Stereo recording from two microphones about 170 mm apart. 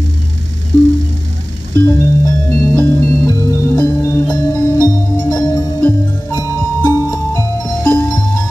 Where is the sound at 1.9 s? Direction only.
15° left (ahead or behind).